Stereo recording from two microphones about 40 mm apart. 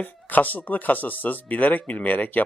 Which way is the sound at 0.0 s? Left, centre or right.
Left.